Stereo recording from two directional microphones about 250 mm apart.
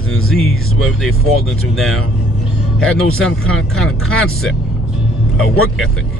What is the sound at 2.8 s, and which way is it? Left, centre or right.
Speech, centre.